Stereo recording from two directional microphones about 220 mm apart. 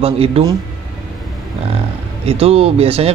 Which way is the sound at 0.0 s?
25° right (ahead or behind).